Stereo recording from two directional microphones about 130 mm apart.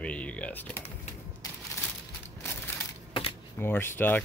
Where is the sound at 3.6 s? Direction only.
15° left (ahead or behind).